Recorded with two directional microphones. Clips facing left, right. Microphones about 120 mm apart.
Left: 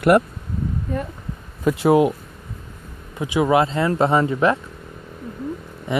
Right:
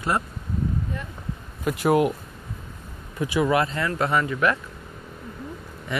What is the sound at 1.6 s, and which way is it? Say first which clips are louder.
Speech: left 5 dB; 30° left (ahead or behind).